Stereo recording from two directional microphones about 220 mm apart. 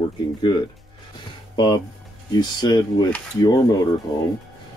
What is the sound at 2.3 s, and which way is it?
Speech, 20° left (ahead or behind).